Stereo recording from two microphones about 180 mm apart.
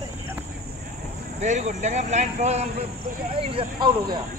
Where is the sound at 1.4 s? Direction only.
40° right (ahead or behind).